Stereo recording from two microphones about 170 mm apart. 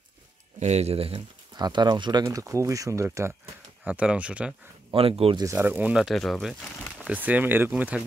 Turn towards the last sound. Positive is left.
turn(degrees=-10)  # may be behind; listen again after turning